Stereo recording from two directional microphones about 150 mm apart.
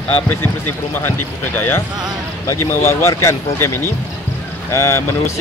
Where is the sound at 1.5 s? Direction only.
15° left (ahead or behind).